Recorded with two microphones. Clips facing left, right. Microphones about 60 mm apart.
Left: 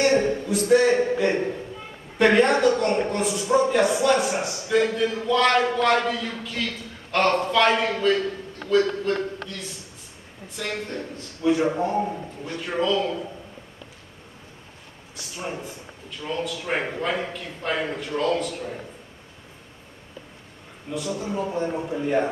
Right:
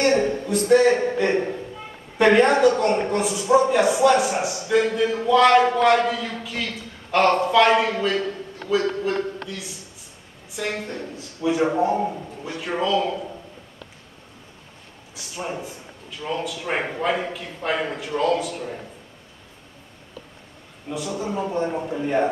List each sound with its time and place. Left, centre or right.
0.2 s a sound: centre
1.1 s a woman's voice: centre
15.1 s speech: centre
20.9 s speech: centre